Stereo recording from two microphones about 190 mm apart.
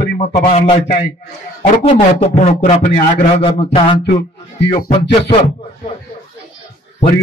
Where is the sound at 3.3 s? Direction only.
30° left (ahead or behind).